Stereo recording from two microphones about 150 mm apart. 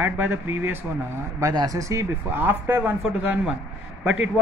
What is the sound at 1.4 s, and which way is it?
Speech, 25° right (ahead or behind).